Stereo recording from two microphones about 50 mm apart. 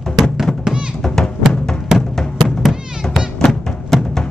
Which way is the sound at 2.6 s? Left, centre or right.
Centre.